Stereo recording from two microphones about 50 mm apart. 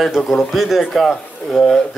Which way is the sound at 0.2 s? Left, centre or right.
Centre.